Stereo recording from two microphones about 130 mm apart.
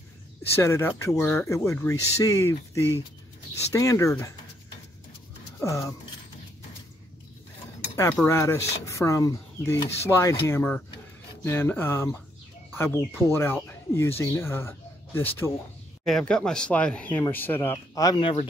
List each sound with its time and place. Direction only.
0.6 s speech: 20° left (ahead or behind)
5.6 s speech: 25° left (ahead or behind)
7.9 s speech: 20° left (ahead or behind)
16.1 s speech: 5° left (ahead or behind); by 18.1 s 25° left (ahead or behind)
18.1 s speech: 45° left (ahead or behind)